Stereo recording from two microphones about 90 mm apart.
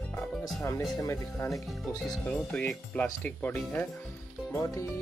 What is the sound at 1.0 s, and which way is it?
Speech, 30° left (ahead or behind).